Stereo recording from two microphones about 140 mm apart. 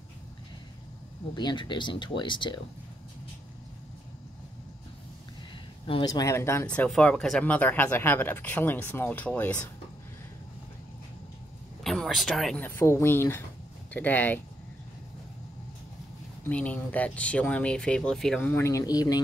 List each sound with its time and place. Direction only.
1.3 s speech: 35° left (ahead or behind)
6.0 s speech: 25° left (ahead or behind)
6.7 s speech: 10° left (ahead or behind)
11.8 s a sound: centre (ahead or behind)
12.5 s speech: 15° left (ahead or behind)
16.4 s speech: 10° left (ahead or behind)
18.6 s speech: 20° left (ahead or behind)